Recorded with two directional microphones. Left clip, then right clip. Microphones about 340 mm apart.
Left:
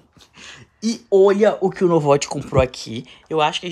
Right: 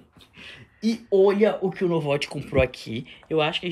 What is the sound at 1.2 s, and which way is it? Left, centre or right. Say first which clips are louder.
Speech: left 5 dB; left.